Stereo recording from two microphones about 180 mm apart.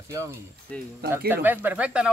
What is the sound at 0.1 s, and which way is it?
Speech, 15° right (ahead or behind).